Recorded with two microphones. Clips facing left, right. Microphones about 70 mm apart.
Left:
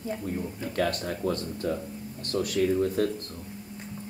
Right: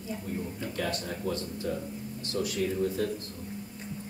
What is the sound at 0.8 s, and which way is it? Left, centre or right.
Speech, left.